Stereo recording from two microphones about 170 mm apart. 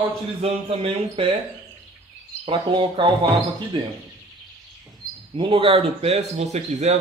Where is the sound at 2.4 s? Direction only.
30° right (ahead or behind).